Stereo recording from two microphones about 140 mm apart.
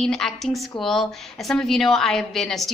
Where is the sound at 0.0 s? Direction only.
5° left (ahead or behind).